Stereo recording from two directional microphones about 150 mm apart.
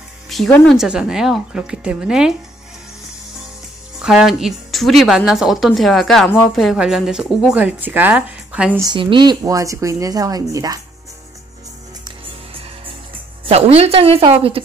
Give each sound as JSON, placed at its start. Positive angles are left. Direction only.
{"t": 0.3, "sound": "music", "side_deg": 0}
{"t": 0.7, "sound": "speech", "side_deg": -5}
{"t": 4.0, "sound": "speech", "side_deg": -5}
{"t": 8.7, "sound": "speech", "side_deg": -30}
{"t": 13.5, "sound": "a woman's voice", "side_deg": -45}